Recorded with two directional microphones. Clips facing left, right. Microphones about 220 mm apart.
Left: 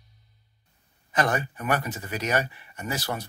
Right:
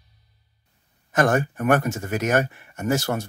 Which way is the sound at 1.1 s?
45° right (ahead or behind).